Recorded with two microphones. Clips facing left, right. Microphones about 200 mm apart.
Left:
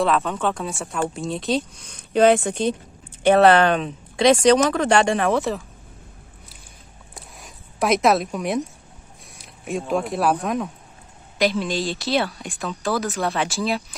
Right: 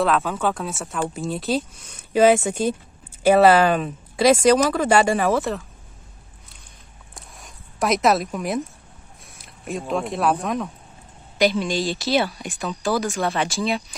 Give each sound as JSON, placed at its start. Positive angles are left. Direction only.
{"t": 0.0, "sound": "speech", "side_deg": 0}
{"t": 7.2, "sound": "a sound", "side_deg": 0}
{"t": 9.3, "sound": "speech", "side_deg": 0}